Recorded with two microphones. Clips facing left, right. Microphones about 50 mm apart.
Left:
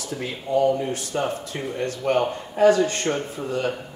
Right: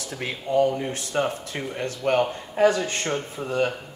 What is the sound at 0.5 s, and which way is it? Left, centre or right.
Speech, right.